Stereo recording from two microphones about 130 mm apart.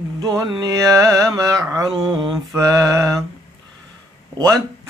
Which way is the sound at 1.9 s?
5° right (ahead or behind).